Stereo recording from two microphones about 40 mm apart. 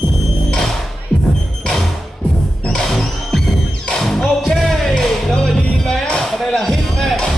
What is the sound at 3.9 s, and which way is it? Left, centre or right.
Music, centre.